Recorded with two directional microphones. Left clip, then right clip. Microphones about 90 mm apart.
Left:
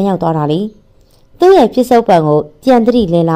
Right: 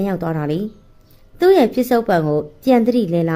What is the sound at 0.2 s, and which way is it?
A woman's voice, 20° left (ahead or behind).